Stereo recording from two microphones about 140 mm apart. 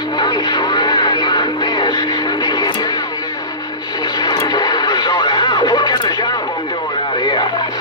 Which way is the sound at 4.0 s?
30° left (ahead or behind).